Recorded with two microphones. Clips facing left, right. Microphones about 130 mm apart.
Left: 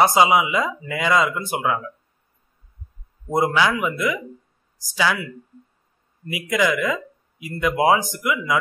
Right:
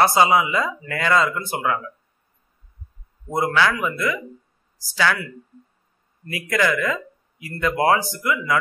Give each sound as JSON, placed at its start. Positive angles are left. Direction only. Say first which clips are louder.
{"t": 0.0, "sound": "speech", "louder": "left 1 dB", "side_deg": 15}
{"t": 3.3, "sound": "speech", "louder": "left 1 dB", "side_deg": 20}
{"t": 6.3, "sound": "speech", "louder": "left 1 dB", "side_deg": 15}